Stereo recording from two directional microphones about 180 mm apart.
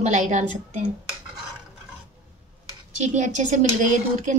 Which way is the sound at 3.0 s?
45° right (ahead or behind).